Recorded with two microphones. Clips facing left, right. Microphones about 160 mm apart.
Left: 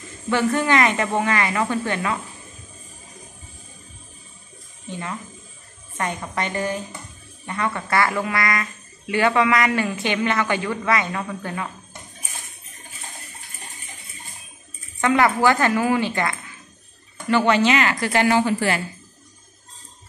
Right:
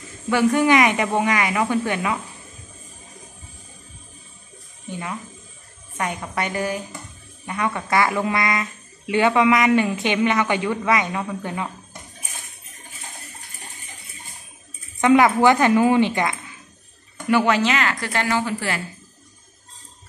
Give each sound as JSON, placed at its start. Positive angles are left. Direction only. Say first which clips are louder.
{"t": 0.3, "sound": "speech", "louder": "right 3 dB", "side_deg": -10}
{"t": 5.9, "sound": "speech", "louder": "even", "side_deg": -10}
{"t": 15.0, "sound": "speech", "louder": "right 3 dB", "side_deg": -15}
{"t": 17.3, "sound": "speech", "louder": "left 1 dB", "side_deg": -5}
{"t": 18.3, "sound": "speech", "louder": "left 4 dB", "side_deg": 20}